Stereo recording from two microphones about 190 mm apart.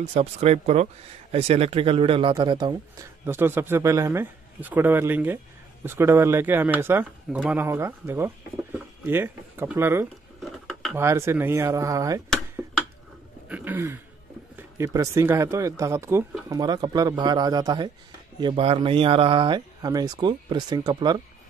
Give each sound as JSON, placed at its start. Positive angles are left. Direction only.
{"t": 0.1, "sound": "a man's voice", "side_deg": -35}
{"t": 10.4, "sound": "a sound", "side_deg": 0}
{"t": 11.0, "sound": "a man's voice", "side_deg": -15}
{"t": 13.5, "sound": "throat clearing", "side_deg": -10}
{"t": 14.8, "sound": "a man's voice", "side_deg": -15}